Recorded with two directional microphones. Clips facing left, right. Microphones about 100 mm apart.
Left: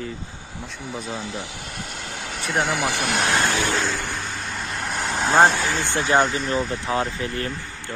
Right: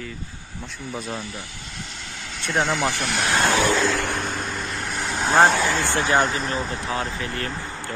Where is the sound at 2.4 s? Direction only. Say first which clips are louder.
Right 1 dB; 5° left (ahead or behind).